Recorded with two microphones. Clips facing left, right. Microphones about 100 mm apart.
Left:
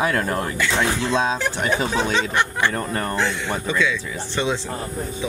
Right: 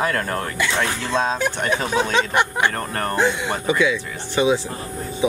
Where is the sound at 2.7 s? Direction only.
65° right (ahead or behind).